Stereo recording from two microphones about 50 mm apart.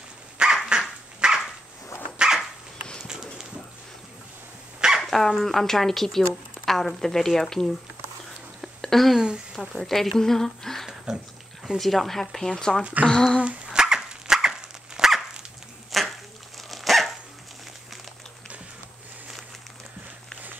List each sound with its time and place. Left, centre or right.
0.4 s dog: centre
4.7 s dog: centre
5.0 s speech: centre
8.5 s a sound: centre
9.2 s a sound: centre
9.8 s speech: centre
13.4 s dog: centre
15.9 s a sound: centre
16.7 s dog: centre